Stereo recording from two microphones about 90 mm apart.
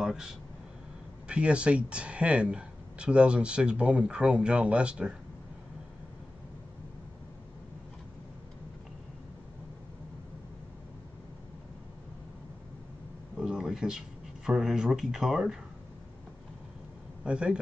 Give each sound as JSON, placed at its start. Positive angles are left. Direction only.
{"t": 0.0, "sound": "speech", "side_deg": -5}
{"t": 13.4, "sound": "speech", "side_deg": -5}
{"t": 17.2, "sound": "a man's voice", "side_deg": -10}